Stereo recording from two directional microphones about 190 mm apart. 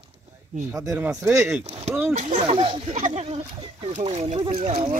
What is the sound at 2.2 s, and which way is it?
Speech, 35° right (ahead or behind).